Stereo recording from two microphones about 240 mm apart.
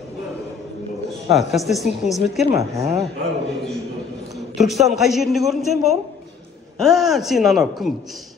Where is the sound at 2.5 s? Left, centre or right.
Centre.